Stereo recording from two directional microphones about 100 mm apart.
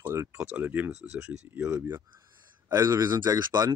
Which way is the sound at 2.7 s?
35° right (ahead or behind).